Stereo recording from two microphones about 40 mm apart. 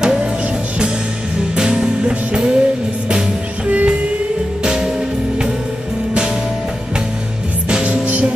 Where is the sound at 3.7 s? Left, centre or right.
Right.